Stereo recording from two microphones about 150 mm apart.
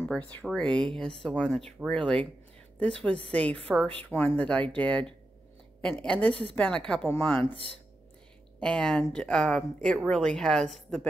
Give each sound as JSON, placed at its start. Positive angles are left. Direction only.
{"t": 0.1, "sound": "a woman's voice", "side_deg": 10}
{"t": 7.4, "sound": "speech", "side_deg": -40}
{"t": 8.5, "sound": "speech", "side_deg": 5}